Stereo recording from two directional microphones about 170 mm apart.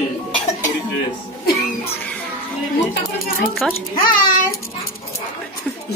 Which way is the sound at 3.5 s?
Centre (ahead or behind).